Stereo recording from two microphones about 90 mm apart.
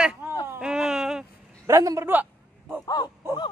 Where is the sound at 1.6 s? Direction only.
35° right (ahead or behind).